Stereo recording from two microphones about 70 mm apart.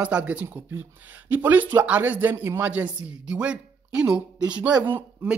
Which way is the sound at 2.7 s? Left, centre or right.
Centre.